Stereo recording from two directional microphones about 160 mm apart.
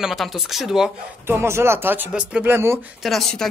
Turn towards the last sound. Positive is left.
turn(degrees=0)  # may be behind; listen again after turning